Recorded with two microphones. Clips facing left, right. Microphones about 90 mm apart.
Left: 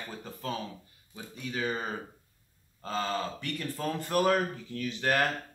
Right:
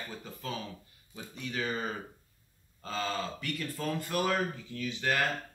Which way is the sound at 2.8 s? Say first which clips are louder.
Left 2 dB; 40° left (ahead or behind).